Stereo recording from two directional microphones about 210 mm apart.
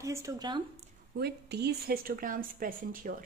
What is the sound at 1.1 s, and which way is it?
A woman's voice, 50° right (ahead or behind).